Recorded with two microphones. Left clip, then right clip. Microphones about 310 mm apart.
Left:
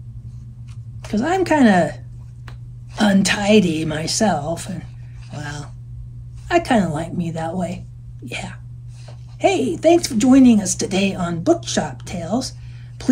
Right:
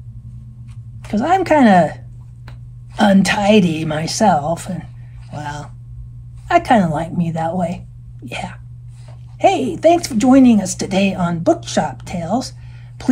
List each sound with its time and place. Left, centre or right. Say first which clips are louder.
1.1 s speech: right 4 dB; right
3.0 s speech: right 4 dB; right
5.3 s music: right 5 dB; right
6.4 s speech: right 4 dB; right